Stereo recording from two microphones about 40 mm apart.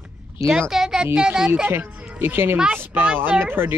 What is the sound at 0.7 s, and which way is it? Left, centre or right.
Speech, centre.